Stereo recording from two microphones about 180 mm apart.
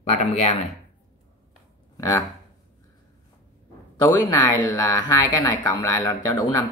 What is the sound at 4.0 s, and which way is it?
Speech, 20° left (ahead or behind).